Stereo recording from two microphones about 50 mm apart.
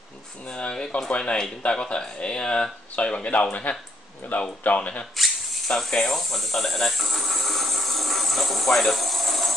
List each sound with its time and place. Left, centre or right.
0.5 s speech: centre
5.1 s a sound: centre
5.8 s speech: centre